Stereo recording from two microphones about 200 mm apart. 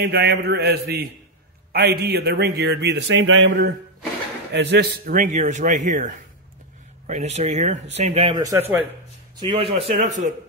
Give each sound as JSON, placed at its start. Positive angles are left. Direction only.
{"t": 0.0, "sound": "a man's voice", "side_deg": -50}
{"t": 4.5, "sound": "speech", "side_deg": -60}
{"t": 9.4, "sound": "speech", "side_deg": -25}